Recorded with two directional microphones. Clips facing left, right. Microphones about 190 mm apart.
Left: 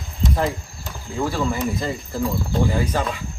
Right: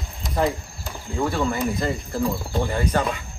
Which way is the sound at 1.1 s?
Centre (ahead or behind).